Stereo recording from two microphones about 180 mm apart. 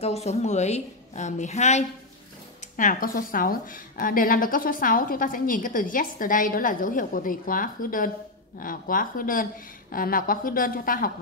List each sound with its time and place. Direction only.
0.0 s a woman's voice: 35° left (ahead or behind)